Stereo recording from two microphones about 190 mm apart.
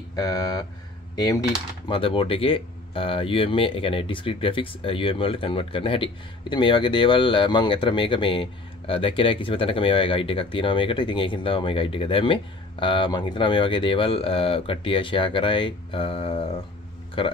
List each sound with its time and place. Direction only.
0.1 s speech: 20° left (ahead or behind)